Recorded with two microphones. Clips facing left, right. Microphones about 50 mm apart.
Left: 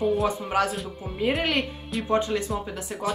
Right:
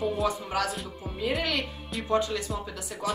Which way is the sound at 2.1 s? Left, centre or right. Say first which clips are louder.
Left 2 dB; left.